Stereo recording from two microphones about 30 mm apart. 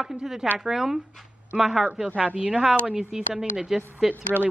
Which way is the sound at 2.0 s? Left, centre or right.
Right.